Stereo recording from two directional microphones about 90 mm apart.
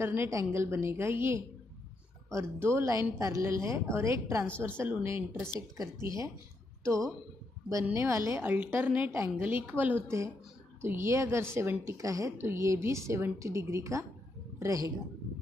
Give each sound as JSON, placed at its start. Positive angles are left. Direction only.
{"t": 0.0, "sound": "a woman's voice", "side_deg": -30}
{"t": 2.6, "sound": "a woman's voice", "side_deg": -30}
{"t": 8.4, "sound": "a woman's voice", "side_deg": -20}
{"t": 10.0, "sound": "a woman's voice", "side_deg": -35}
{"t": 12.0, "sound": "a woman's voice", "side_deg": -40}